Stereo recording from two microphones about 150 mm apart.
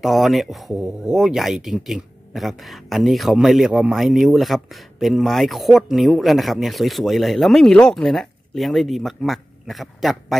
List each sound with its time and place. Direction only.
0.0 s speech: centre (ahead or behind)